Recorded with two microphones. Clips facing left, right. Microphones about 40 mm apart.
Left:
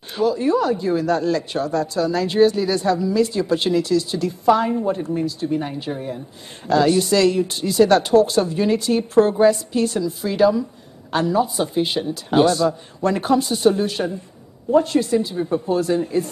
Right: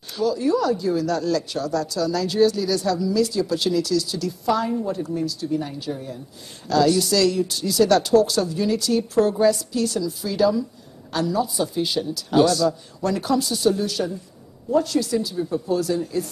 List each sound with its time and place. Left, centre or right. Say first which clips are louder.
0.1 s a woman's voice: left 3 dB; left